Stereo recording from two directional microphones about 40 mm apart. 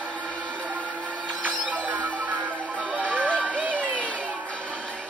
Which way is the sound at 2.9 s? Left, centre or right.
Right.